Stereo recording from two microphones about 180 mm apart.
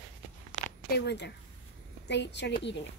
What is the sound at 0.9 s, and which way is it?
A woman's voice, 70° left (ahead or behind).